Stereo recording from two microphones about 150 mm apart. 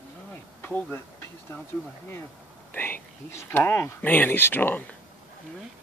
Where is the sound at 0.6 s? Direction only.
10° left (ahead or behind).